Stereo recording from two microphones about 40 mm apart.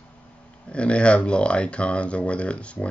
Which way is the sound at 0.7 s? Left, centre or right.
Left.